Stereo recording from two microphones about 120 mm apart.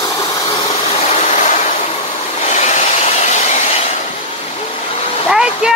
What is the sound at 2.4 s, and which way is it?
Train, 70° left (ahead or behind).